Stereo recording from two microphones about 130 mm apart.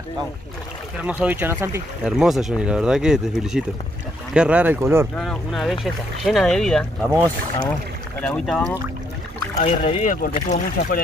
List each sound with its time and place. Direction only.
1.0 s speech: 10° right (ahead or behind)
2.0 s speech: 5° right (ahead or behind); by 5.0 s 20° right (ahead or behind)
5.1 s speech: 5° left (ahead or behind)
8.2 s speech: 5° left (ahead or behind)
9.6 s speech: 55° left (ahead or behind)
10.5 s speech: 90° left